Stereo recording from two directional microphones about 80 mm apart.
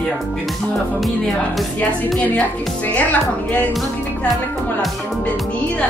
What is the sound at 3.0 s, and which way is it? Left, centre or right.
Speech, centre.